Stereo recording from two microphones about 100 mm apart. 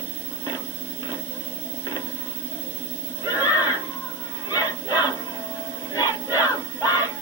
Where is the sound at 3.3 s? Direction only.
40° left (ahead or behind).